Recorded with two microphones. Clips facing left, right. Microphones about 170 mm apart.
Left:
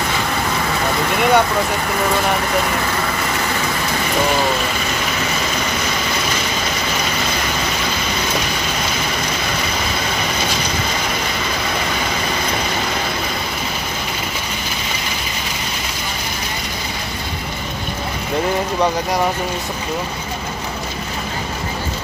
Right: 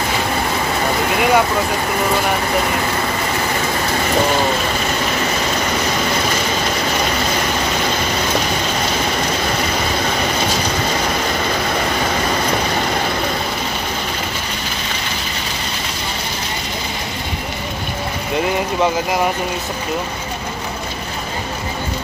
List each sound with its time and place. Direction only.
1.1 s vehicle: centre (ahead or behind)